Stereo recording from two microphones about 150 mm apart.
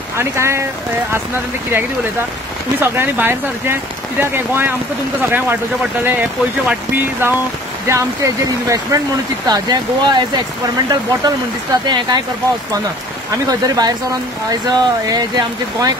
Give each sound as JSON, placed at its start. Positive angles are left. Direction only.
{"t": 0.2, "sound": "speech", "side_deg": -20}
{"t": 2.8, "sound": "speech", "side_deg": -15}
{"t": 6.0, "sound": "speech", "side_deg": -10}
{"t": 13.3, "sound": "speech", "side_deg": -25}